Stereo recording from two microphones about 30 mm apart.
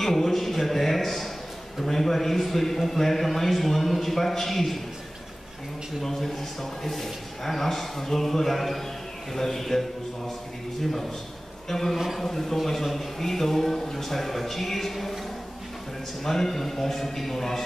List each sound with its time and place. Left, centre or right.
0.0 s a sound: centre
1.8 s a man's voice: centre
6.0 s a man's voice: centre
11.7 s a man's voice: centre
16.3 s a man's voice: centre